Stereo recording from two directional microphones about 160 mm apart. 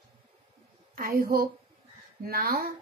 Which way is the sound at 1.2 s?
65° right (ahead or behind).